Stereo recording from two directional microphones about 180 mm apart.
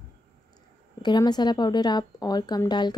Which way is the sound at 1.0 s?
25° left (ahead or behind).